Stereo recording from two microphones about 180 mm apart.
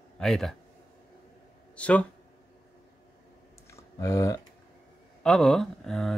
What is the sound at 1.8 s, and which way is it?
Speech, 5° left (ahead or behind).